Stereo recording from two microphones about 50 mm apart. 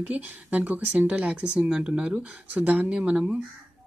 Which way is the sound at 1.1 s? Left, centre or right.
Right.